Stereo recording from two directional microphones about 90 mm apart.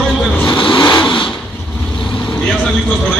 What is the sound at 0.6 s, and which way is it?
Vehicle, 70° left (ahead or behind).